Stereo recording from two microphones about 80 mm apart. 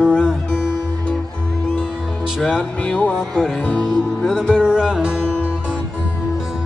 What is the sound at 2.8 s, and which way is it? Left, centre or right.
Speech, centre.